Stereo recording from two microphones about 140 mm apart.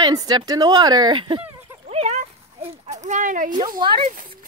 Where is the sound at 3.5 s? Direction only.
30° right (ahead or behind).